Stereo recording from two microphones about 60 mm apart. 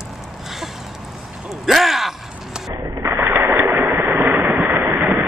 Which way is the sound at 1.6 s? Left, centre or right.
Centre.